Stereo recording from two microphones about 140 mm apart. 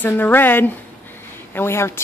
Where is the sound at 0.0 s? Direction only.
15° left (ahead or behind).